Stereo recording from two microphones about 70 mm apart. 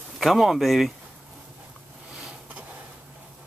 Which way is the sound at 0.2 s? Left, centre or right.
Centre.